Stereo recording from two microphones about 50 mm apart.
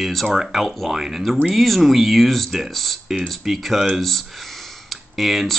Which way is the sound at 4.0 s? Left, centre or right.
Centre.